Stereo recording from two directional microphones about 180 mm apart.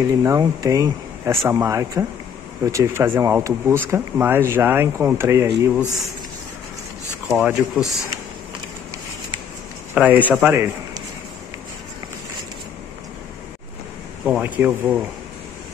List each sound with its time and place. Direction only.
0.0 s speech: 15° right (ahead or behind)
7.2 s speech: 5° right (ahead or behind)
9.9 s speech: 10° right (ahead or behind)
14.2 s speech: 5° right (ahead or behind)